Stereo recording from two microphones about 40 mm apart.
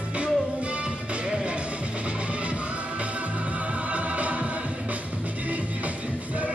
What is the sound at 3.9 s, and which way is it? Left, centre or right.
Music, right.